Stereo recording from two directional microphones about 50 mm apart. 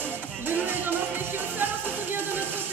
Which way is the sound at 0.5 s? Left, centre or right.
Right.